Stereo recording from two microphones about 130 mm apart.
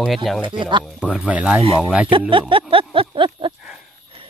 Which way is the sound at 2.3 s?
45° right (ahead or behind).